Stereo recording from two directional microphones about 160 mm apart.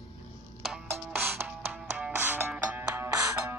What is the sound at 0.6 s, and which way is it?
Music, 5° right (ahead or behind).